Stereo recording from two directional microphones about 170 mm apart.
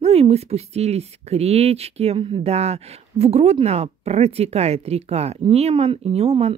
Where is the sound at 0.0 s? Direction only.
35° right (ahead or behind).